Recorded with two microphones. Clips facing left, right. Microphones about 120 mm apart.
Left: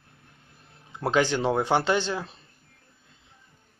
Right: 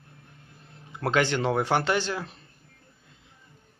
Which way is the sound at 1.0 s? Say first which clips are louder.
Left 1 dB; 15° left (ahead or behind).